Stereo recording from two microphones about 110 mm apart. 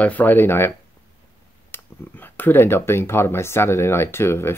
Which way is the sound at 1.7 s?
15° left (ahead or behind).